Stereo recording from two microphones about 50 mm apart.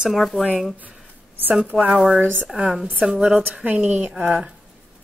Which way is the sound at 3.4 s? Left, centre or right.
Right.